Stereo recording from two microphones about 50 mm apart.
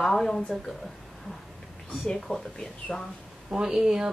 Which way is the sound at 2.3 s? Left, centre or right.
Left.